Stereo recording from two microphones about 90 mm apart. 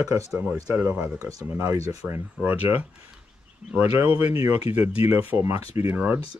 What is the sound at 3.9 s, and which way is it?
Speech, 20° right (ahead or behind).